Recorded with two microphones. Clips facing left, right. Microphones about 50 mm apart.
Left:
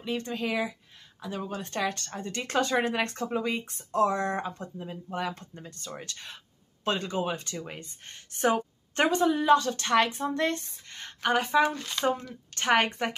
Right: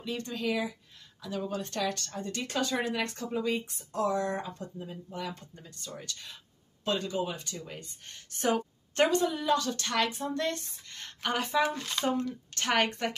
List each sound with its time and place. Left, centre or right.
0.0 s speech: left
8.1 s speech: left
8.5 s a sound: centre
9.1 s speech: left
11.0 s speech: centre
11.6 s speech: centre
12.5 s speech: centre